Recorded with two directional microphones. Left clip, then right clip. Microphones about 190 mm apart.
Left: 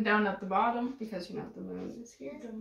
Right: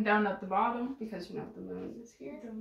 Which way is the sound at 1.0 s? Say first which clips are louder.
Left 1 dB; centre (ahead or behind).